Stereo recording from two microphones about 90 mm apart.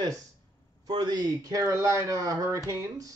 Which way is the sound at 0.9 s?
50° right (ahead or behind).